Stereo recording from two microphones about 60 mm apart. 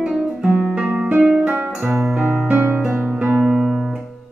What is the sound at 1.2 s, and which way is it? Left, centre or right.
Music, centre.